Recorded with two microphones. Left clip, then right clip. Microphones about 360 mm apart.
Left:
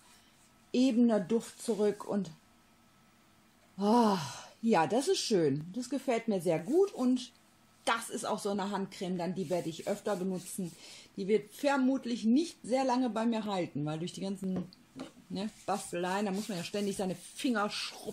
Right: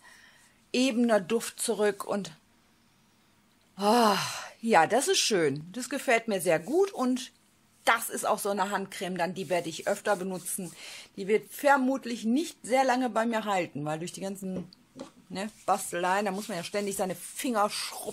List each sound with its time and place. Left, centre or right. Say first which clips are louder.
0.7 s speech: right 3 dB; right
3.8 s speech: right 5 dB; right
10.0 s speech: right 6 dB; right
10.8 s speech: right 3 dB; right